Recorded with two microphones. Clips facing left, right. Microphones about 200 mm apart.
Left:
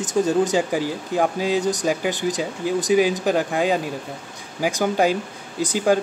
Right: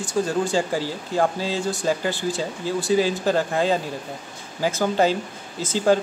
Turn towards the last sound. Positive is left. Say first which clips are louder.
# even
turn(degrees=15)  # may be behind; listen again after turning